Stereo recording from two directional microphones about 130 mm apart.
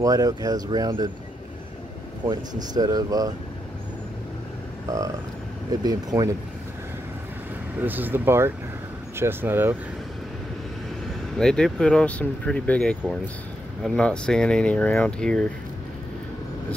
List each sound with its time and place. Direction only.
0.0 s speech: 30° right (ahead or behind)
2.2 s speech: 30° right (ahead or behind)
4.9 s speech: 25° right (ahead or behind)
7.8 s speech: 15° right (ahead or behind)
11.3 s speech: 5° left (ahead or behind)